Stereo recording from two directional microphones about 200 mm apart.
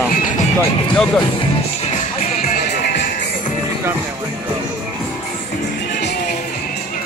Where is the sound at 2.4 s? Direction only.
55° left (ahead or behind).